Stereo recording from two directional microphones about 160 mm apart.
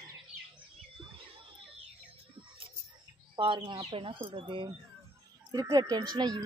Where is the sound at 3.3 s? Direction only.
30° right (ahead or behind).